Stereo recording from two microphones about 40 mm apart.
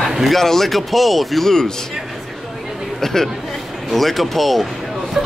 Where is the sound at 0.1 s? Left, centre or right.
Centre.